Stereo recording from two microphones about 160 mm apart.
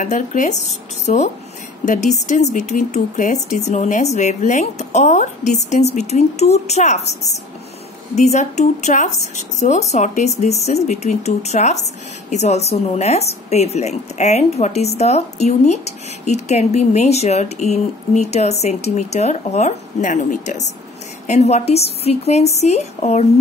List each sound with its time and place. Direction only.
0.0 s speech: 50° left (ahead or behind)
8.2 s speech: 45° left (ahead or behind)